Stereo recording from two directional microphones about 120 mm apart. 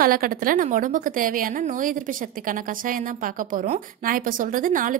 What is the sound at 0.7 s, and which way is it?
A woman's voice, 90° right.